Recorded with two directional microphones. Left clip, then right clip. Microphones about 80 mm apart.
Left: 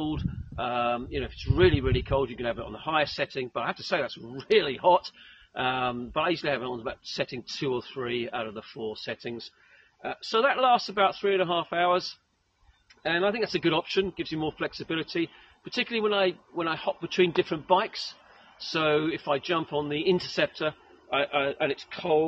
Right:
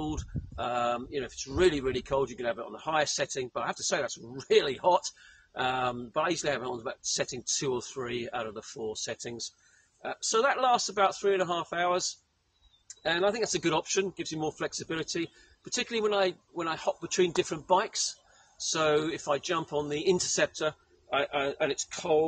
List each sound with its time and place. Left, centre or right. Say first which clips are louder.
0.0 s speech: left 4 dB; centre
10.4 s speech: left 4 dB; centre
13.0 s speech: left 1 dB; centre
13.9 s speech: left 3 dB; centre
14.2 s speech: left 2 dB; centre
14.9 s speech: left 3 dB; centre
17.3 s speech: left 3 dB; centre
17.6 s a man's voice: left 1 dB; centre